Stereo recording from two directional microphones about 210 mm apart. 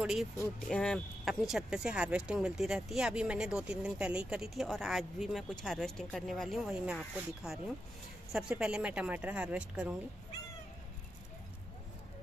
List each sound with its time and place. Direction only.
0.0 s speech: centre (ahead or behind)